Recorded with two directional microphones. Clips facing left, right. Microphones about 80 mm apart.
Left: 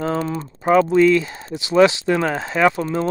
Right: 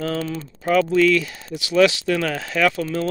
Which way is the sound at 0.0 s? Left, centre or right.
Left.